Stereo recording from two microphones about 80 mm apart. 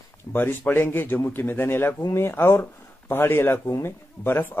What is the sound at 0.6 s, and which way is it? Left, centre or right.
Speech, left.